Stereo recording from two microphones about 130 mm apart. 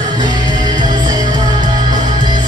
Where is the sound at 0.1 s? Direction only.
35° right (ahead or behind).